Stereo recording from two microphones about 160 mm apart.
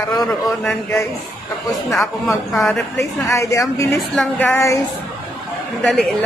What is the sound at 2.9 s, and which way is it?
A woman's voice, 20° left (ahead or behind).